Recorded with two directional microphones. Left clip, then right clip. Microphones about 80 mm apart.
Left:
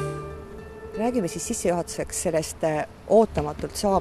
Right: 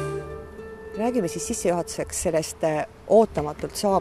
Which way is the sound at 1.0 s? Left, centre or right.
Right.